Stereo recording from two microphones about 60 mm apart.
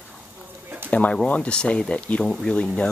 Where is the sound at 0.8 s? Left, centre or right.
Left.